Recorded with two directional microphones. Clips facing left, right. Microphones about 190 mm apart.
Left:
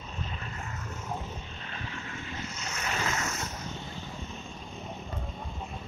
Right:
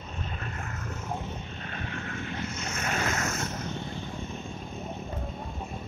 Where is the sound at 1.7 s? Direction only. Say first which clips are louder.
Right 4 dB; 55° right (ahead or behind).